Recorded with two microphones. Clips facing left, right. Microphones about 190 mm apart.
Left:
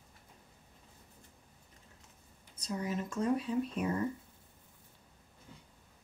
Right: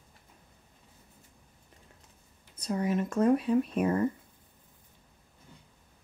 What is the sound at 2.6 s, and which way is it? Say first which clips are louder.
Speech: right 7 dB; 60° right (ahead or behind).